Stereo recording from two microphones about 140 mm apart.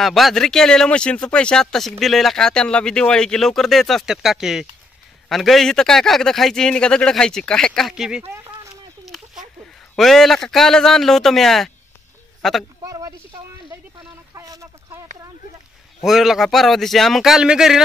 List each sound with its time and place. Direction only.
0.0 s speech: centre (ahead or behind)
9.0 s a sound: centre (ahead or behind)
9.9 s speech: centre (ahead or behind)
12.8 s speech: 25° right (ahead or behind)
14.3 s a sound: 25° right (ahead or behind)
16.0 s speech: centre (ahead or behind)